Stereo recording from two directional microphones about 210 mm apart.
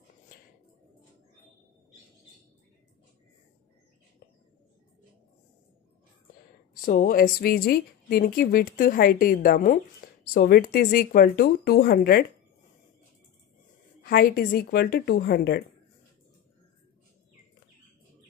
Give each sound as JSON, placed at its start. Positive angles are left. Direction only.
{"t": 6.8, "sound": "a woman's voice", "side_deg": 40}
{"t": 14.0, "sound": "a woman's voice", "side_deg": 45}